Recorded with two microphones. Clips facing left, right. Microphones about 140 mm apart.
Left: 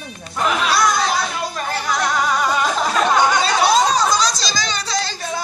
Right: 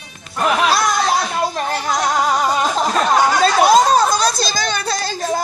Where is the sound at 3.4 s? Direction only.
50° right (ahead or behind).